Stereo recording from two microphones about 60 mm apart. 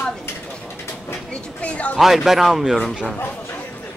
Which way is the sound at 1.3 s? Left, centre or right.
Centre.